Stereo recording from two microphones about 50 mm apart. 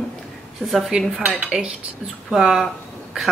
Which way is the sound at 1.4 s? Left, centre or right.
Centre.